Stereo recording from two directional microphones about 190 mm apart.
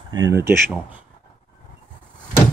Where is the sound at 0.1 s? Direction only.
15° right (ahead or behind).